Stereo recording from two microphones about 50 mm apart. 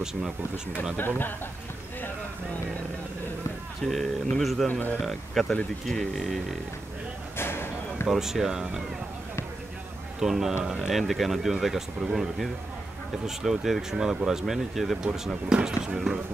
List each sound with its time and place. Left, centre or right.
0.9 s speech: left
3.8 s speech: centre
4.6 s a man's voice: left
5.0 s speech: centre
7.3 s a sound: left
8.1 s speech: centre
10.2 s speech: centre